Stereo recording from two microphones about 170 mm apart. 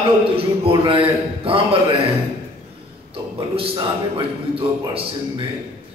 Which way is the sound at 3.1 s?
30° right (ahead or behind).